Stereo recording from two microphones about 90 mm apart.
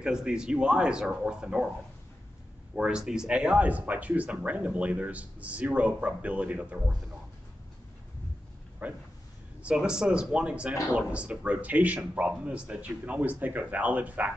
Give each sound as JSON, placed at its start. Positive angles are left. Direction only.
{"t": 0.0, "sound": "speech", "side_deg": -10}
{"t": 2.7, "sound": "speech", "side_deg": -10}
{"t": 8.8, "sound": "speech", "side_deg": -20}